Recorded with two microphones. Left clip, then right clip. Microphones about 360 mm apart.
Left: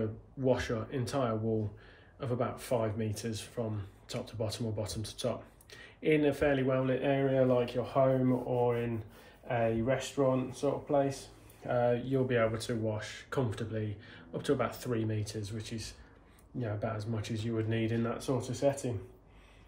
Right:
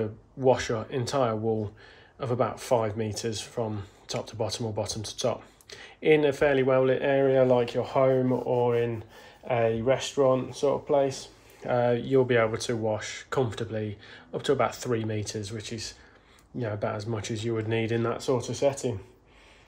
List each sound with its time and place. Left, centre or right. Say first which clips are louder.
0.4 s speech: right 7 dB; centre
9.5 s speech: right 6 dB; right